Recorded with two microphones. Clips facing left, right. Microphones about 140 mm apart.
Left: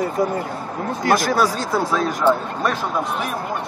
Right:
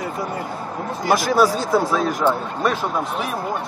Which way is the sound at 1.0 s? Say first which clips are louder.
Right 1 dB; centre (ahead or behind).